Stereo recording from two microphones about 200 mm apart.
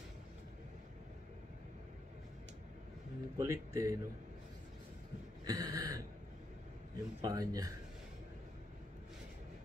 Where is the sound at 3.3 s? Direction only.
15° right (ahead or behind).